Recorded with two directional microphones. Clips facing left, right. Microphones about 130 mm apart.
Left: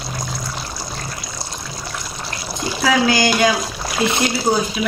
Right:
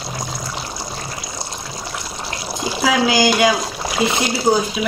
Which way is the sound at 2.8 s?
5° right (ahead or behind).